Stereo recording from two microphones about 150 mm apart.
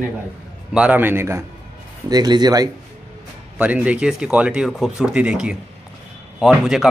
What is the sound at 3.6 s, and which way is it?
Speech, 10° right (ahead or behind).